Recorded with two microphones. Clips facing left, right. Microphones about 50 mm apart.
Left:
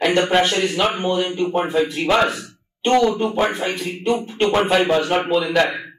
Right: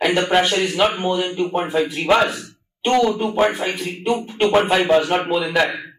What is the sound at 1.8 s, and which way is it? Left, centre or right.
Speech, centre.